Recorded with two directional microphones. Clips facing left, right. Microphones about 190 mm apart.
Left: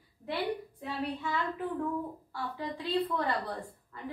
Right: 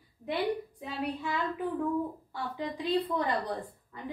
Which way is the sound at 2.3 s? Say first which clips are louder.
Right 1 dB; 20° right (ahead or behind).